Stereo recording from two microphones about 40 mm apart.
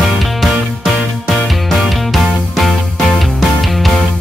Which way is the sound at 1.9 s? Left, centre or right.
Centre.